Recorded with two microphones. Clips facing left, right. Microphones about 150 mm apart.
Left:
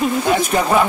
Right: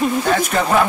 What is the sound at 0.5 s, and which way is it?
Speech, 15° left (ahead or behind).